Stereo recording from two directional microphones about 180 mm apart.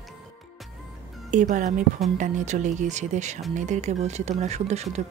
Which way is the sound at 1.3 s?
45° right (ahead or behind).